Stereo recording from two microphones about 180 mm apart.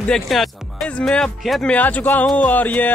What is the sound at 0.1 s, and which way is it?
Speech, centre (ahead or behind).